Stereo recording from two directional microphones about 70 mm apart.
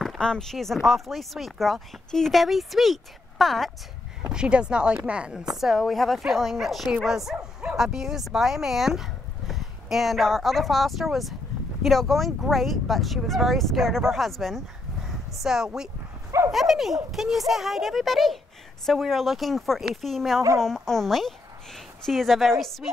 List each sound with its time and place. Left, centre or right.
0.2 s speech: centre
4.3 s speech: centre
5.6 s speech: centre
16.3 s dog: right
16.5 s speech: centre